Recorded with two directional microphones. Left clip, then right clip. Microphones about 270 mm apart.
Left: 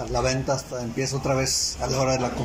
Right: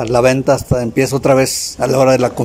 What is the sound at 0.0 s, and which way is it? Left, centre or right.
A man's voice, right.